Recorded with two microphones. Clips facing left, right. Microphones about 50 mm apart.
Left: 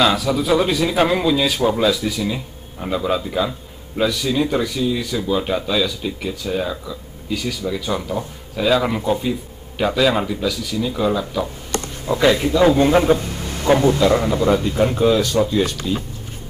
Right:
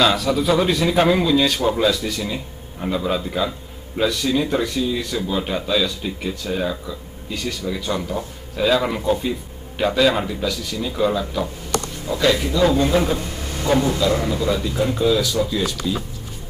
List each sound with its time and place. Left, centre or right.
0.0 s speech: centre
11.7 s a man's voice: left